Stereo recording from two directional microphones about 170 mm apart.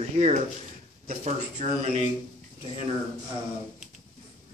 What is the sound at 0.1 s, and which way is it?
A man's voice, 40° right (ahead or behind).